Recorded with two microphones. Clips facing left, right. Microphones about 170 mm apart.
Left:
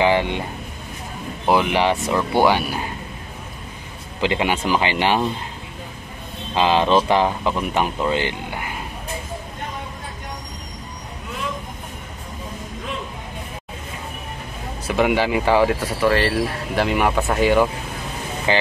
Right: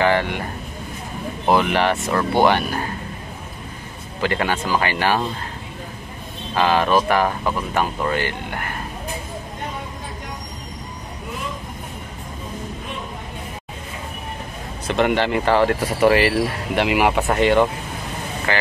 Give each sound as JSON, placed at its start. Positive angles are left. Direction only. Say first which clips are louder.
{"t": 0.0, "sound": "speech", "louder": "left 1 dB", "side_deg": 15}
{"t": 1.5, "sound": "speech", "louder": "even", "side_deg": 15}
{"t": 4.2, "sound": "speech", "louder": "left 1 dB", "side_deg": 15}
{"t": 6.5, "sound": "speech", "louder": "left 1 dB", "side_deg": 20}
{"t": 14.9, "sound": "speech", "louder": "even", "side_deg": 5}
{"t": 16.1, "sound": "speech", "louder": "right 1 dB", "side_deg": -10}
{"t": 18.5, "sound": "speech", "louder": "left 3 dB", "side_deg": 20}